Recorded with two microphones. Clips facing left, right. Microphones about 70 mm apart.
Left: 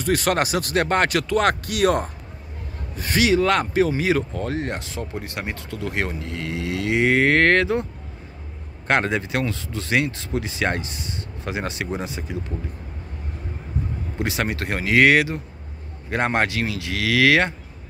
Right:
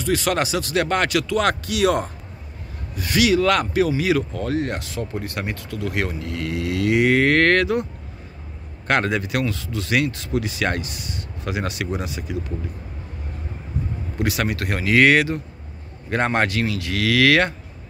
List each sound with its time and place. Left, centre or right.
0.0 s speech: left
8.8 s speech: left
14.1 s speech: left